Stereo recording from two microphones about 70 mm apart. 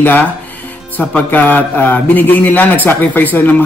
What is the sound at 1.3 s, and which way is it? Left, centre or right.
A man's voice, left.